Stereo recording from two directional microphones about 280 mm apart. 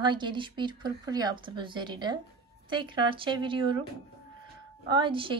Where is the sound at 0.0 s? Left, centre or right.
Centre.